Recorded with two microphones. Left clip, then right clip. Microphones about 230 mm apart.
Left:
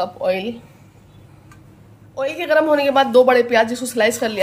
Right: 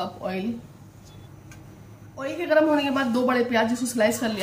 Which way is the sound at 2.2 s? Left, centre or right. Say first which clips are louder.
Left 4 dB; left.